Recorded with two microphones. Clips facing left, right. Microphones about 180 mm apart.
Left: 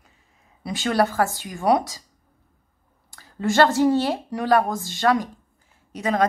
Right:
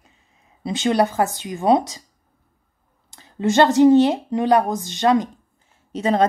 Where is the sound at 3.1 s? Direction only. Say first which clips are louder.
Right 4 dB; 20° right (ahead or behind).